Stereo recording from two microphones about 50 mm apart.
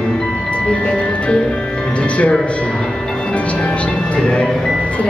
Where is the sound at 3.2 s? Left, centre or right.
Left.